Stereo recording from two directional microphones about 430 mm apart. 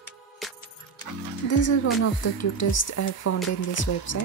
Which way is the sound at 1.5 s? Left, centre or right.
Left.